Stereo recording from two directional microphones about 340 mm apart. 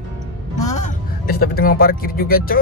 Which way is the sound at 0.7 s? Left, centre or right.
Left.